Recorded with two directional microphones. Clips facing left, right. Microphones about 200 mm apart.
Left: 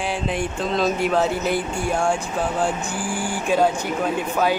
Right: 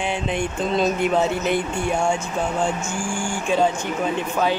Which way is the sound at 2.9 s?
35° left (ahead or behind).